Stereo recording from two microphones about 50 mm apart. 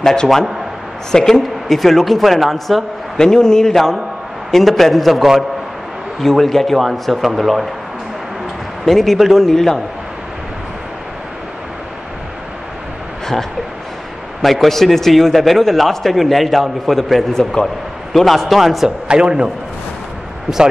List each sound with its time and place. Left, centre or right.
0.0 s a man's voice: centre
3.2 s a man's voice: centre
8.8 s a man's voice: centre
14.4 s a man's voice: centre
19.0 s a man's voice: centre